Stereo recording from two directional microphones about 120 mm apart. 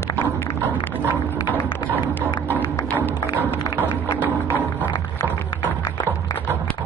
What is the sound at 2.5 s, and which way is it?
Music, 15° left (ahead or behind).